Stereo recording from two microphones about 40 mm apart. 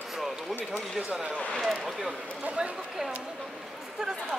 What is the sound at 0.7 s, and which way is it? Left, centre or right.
Speech, right.